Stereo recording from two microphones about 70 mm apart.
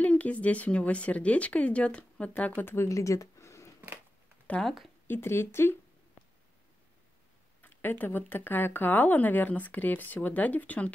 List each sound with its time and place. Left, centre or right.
0.0 s speech: centre
2.6 s speech: left
2.9 s a sound: left
4.6 s a woman's voice: centre
5.0 s speech: left
7.6 s speech: left